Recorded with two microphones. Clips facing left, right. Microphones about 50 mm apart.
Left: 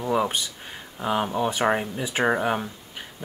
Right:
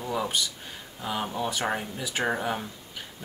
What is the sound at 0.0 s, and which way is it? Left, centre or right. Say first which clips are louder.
Speech: left 5 dB; left.